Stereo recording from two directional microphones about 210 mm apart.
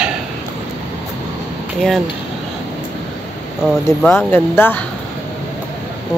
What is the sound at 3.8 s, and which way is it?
Speech, 10° left (ahead or behind).